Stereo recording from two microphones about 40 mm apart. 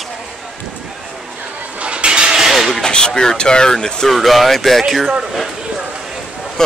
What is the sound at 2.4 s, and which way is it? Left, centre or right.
Vehicle, centre.